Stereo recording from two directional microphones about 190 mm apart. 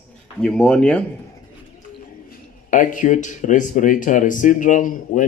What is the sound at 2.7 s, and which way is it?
Speech, 45° left (ahead or behind).